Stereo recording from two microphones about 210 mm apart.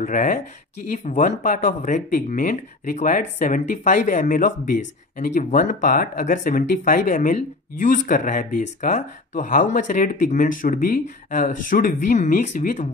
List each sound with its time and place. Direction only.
0.0 s speech: 40° left (ahead or behind)